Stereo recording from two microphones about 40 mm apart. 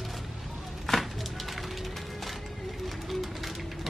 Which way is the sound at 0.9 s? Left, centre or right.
Centre.